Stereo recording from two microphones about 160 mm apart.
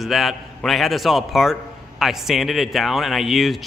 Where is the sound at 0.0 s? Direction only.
Centre (ahead or behind).